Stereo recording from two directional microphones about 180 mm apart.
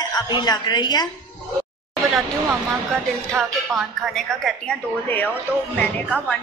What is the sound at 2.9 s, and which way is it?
Speech, 5° left (ahead or behind).